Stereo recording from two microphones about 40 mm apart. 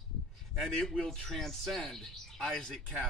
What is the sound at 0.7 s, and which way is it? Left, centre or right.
A man's voice, centre.